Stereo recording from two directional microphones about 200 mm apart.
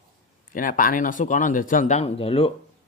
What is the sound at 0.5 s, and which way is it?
Speech, 45° left (ahead or behind).